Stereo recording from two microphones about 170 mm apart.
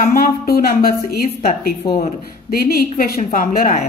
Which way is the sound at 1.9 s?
45° left (ahead or behind).